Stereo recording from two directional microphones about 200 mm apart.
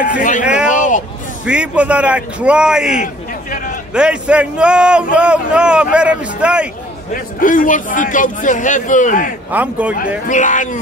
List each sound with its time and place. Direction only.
0.0 s speech: 40° left (ahead or behind)
0.4 s a sound: 5° right (ahead or behind)
1.4 s a man's voice: 5° right (ahead or behind)
3.0 s a sound: 45° left (ahead or behind)
3.9 s a man's voice: 5° right (ahead or behind)
7.2 s a man's voice: 45° left (ahead or behind)
9.5 s a man's voice: 10° right (ahead or behind)
9.9 s a man's voice: 40° left (ahead or behind)